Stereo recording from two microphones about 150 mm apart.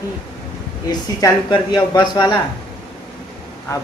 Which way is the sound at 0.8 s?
25° left (ahead or behind).